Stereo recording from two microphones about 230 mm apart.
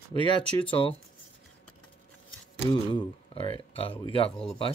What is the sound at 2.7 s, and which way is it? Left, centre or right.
Speech, centre.